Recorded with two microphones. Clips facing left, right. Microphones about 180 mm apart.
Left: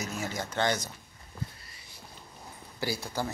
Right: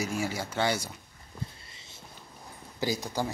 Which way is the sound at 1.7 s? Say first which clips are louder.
Right 1 dB; 25° right (ahead or behind).